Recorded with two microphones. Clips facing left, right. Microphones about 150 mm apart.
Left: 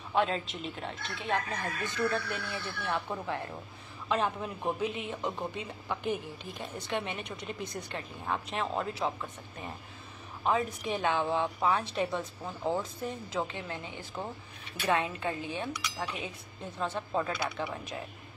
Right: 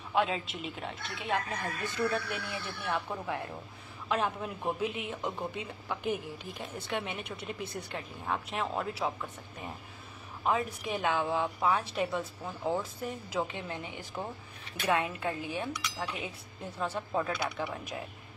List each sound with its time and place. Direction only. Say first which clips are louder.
0.1 s a woman's voice: left 1 dB; 5° right (ahead or behind)
10.4 s a woman's voice: left 1 dB; 5° right (ahead or behind)
14.9 s a woman's voice: even; 5° right (ahead or behind)